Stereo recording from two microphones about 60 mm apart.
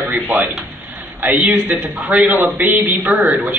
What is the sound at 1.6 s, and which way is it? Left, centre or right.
Speech, right.